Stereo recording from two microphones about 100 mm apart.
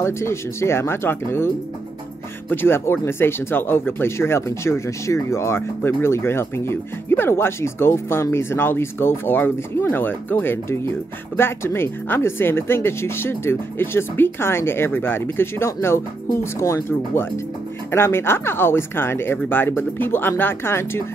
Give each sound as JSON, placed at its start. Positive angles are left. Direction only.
{"t": 0.0, "sound": "speech", "side_deg": 25}
{"t": 2.5, "sound": "speech", "side_deg": 25}